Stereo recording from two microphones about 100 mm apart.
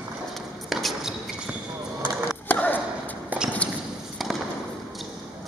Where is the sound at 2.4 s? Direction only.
15° left (ahead or behind).